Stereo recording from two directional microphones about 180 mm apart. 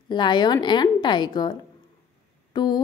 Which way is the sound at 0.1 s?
25° left (ahead or behind).